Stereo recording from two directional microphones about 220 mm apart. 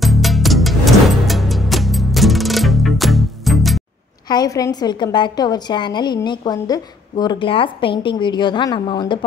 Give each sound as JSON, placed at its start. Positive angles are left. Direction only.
{"t": 0.0, "sound": "music", "side_deg": 0}
{"t": 4.3, "sound": "a woman's voice", "side_deg": 15}